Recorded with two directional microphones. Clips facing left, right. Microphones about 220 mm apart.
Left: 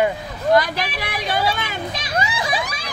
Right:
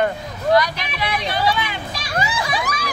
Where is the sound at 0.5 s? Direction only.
50° left (ahead or behind).